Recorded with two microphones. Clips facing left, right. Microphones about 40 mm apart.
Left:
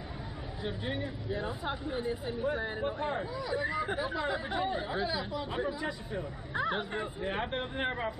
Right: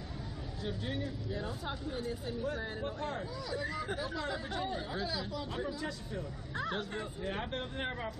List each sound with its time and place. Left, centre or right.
0.7 s speech: left